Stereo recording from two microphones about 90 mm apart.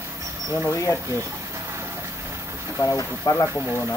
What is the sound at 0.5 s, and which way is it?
Speech, 35° left (ahead or behind).